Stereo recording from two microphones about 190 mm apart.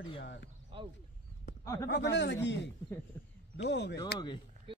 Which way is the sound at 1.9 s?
65° left (ahead or behind).